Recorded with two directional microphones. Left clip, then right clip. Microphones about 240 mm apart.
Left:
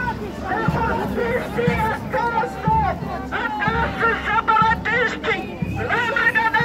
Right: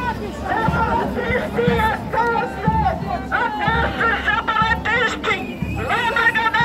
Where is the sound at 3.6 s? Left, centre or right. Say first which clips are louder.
Right 1 dB; right.